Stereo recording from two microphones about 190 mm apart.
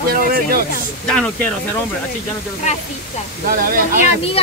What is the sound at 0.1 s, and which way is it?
Speech, 50° right (ahead or behind).